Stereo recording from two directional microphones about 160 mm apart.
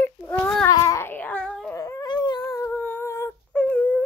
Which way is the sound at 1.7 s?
20° left (ahead or behind).